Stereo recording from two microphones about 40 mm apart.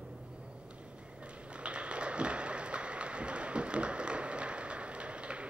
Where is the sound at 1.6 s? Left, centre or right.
Right.